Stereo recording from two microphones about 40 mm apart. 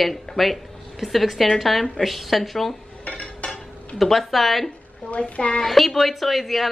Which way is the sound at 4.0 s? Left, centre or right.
Centre.